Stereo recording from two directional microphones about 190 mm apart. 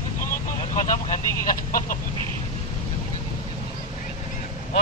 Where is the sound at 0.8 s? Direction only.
40° left (ahead or behind).